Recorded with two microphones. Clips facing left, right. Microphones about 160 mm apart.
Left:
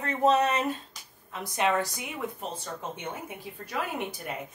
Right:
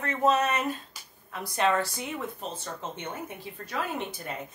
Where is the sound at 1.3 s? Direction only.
20° left (ahead or behind).